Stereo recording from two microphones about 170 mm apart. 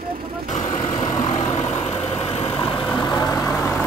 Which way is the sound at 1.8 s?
35° left (ahead or behind).